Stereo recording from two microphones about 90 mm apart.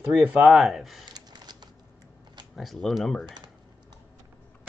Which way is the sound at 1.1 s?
50° right (ahead or behind).